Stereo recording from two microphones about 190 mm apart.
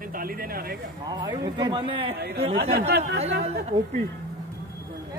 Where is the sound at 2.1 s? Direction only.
55° right (ahead or behind).